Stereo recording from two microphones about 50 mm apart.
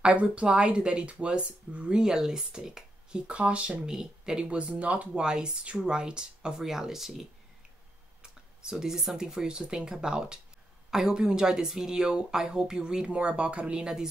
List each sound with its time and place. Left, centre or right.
0.0 s speech: right
3.8 s speech: centre
4.5 s speech: right
5.2 s speech: centre